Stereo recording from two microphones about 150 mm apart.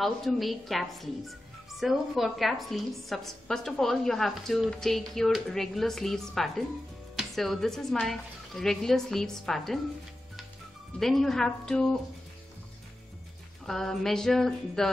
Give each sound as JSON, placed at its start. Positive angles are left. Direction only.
{"t": 0.0, "sound": "a woman's voice", "side_deg": 0}
{"t": 11.0, "sound": "a woman's voice", "side_deg": 0}
{"t": 13.7, "sound": "a woman's voice", "side_deg": 5}